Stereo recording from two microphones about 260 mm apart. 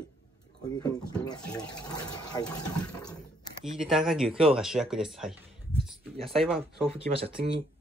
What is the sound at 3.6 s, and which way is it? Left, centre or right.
Speech, centre.